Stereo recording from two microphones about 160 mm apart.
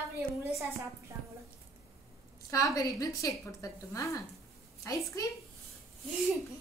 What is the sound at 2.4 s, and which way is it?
A woman's voice, 20° left (ahead or behind).